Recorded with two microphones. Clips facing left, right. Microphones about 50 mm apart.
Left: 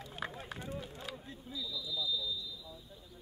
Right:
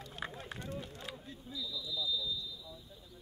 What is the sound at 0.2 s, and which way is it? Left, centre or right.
Run, centre.